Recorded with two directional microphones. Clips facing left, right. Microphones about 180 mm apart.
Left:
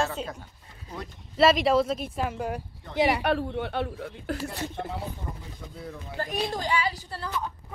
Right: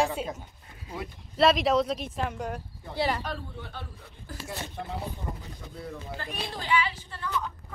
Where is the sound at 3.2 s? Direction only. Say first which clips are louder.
Left 11 dB; 70° left (ahead or behind).